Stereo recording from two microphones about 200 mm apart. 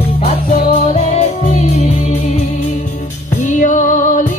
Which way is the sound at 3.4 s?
40° left (ahead or behind).